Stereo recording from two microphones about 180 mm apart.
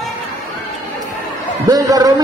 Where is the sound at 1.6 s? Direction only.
20° right (ahead or behind).